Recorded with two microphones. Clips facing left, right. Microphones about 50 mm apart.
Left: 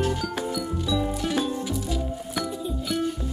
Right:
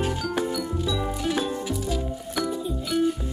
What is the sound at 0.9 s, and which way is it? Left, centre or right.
Music, centre.